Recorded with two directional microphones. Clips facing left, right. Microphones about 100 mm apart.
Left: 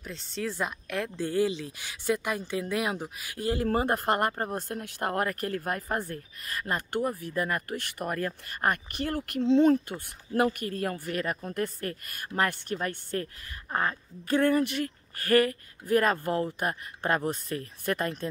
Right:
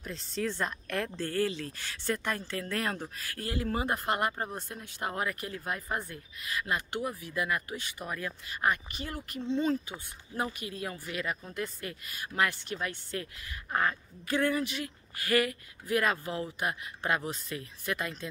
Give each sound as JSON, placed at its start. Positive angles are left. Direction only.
{"t": 0.0, "sound": "speech", "side_deg": 0}
{"t": 1.2, "sound": "speech", "side_deg": 15}
{"t": 3.5, "sound": "speech", "side_deg": 45}
{"t": 9.7, "sound": "speech", "side_deg": 60}